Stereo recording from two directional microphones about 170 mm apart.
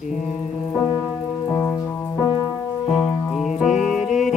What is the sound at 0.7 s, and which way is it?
Music, 20° left (ahead or behind).